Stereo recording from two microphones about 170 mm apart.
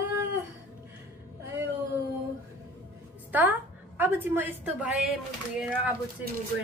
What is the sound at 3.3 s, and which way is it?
A woman's voice, 10° right (ahead or behind).